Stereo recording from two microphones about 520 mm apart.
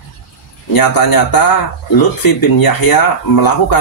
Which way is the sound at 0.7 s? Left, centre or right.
Left.